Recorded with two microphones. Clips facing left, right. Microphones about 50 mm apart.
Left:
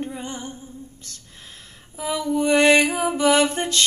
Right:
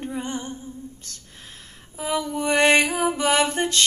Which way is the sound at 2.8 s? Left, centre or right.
Left.